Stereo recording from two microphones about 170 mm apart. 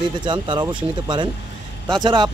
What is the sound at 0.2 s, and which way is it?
Speech, 25° right (ahead or behind).